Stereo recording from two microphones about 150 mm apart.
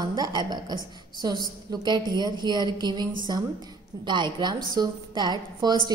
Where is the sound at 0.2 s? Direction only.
30° right (ahead or behind).